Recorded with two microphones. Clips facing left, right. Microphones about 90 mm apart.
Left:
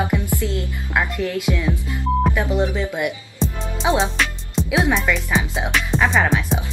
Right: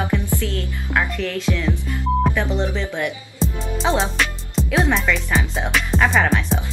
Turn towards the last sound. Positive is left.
turn(degrees=0)  # may be behind; listen again after turning